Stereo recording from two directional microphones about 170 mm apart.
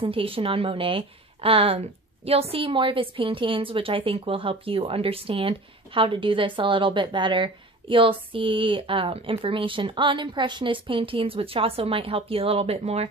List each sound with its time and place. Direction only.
0.0 s a woman's voice: 30° right (ahead or behind)